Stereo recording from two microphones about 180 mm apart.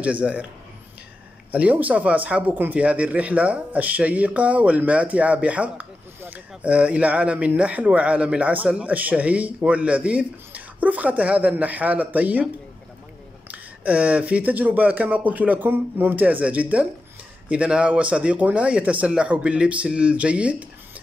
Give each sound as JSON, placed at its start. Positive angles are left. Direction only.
{"t": 0.0, "sound": "speech", "side_deg": -10}
{"t": 1.5, "sound": "speech", "side_deg": -10}
{"t": 13.5, "sound": "speech", "side_deg": -10}